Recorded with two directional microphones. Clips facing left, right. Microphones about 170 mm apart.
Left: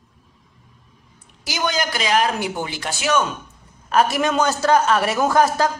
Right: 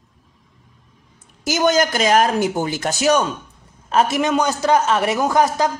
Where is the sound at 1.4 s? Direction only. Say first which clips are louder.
Right 7 dB; 45° right (ahead or behind).